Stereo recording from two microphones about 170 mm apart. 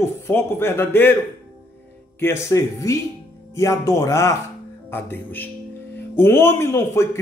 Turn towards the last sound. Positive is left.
turn(degrees=15)  # may be behind; listen again after turning